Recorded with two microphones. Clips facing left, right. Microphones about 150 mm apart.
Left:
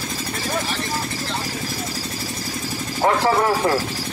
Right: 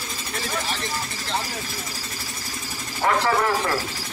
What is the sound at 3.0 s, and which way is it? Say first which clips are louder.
Speech: left 3 dB; 30° left (ahead or behind).